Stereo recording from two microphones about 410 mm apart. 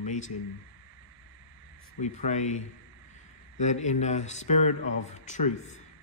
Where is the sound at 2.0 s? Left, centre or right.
Centre.